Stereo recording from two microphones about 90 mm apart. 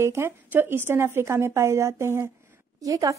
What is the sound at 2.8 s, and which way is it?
Speech, 40° right (ahead or behind).